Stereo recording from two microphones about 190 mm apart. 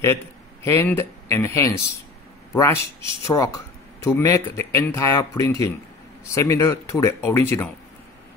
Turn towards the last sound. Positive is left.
turn(degrees=10)  # may be behind; listen again after turning